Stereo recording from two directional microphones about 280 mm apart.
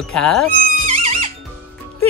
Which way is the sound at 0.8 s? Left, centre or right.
Right.